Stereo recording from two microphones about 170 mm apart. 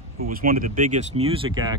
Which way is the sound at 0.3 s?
55° right (ahead or behind).